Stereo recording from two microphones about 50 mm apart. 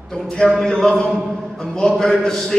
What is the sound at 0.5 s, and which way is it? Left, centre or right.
A man's voice, centre.